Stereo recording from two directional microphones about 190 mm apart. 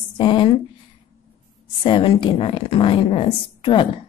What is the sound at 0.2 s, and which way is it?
Speech, 25° left (ahead or behind).